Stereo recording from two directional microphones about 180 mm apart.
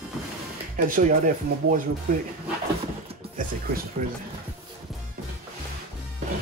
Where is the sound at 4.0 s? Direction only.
45° right (ahead or behind).